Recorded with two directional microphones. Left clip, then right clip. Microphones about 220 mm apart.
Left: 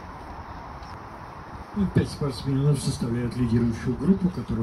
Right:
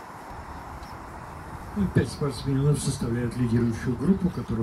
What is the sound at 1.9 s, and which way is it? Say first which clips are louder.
Speech: right 1 dB; 50° left (ahead or behind).